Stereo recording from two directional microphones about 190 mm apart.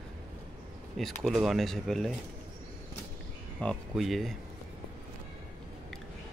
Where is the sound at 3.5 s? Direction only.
Centre (ahead or behind).